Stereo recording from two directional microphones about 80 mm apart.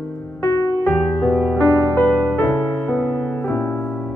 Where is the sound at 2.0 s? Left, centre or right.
Left.